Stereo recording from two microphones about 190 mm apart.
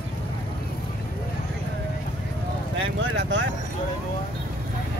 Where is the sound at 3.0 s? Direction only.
80° right.